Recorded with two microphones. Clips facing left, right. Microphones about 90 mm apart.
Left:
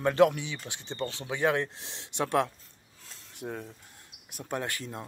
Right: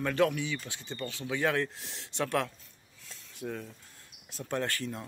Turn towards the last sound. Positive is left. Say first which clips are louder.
# right 1 dB
turn(degrees=20)  # may be behind; listen again after turning